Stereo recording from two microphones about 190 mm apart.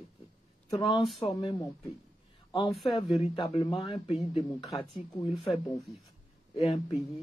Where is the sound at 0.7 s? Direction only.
25° left (ahead or behind).